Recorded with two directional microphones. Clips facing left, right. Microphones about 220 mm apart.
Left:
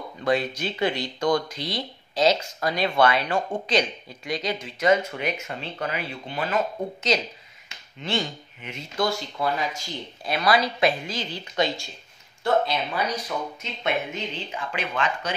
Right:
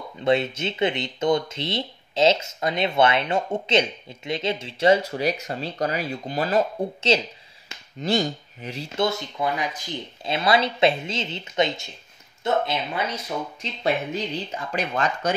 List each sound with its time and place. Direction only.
0.2 s speech: 25° right (ahead or behind); by 15.3 s 40° right (ahead or behind)